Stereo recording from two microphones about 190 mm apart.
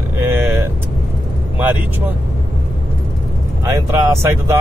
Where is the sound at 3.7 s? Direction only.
15° right (ahead or behind).